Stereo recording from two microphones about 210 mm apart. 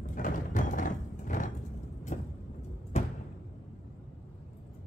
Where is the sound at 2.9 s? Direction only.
30° left (ahead or behind).